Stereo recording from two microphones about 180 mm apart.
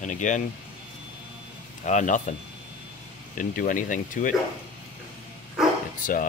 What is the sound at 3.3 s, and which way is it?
Speech, 50° left (ahead or behind).